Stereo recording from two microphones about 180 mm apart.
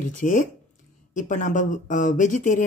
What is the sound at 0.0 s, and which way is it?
Speech, 45° left (ahead or behind).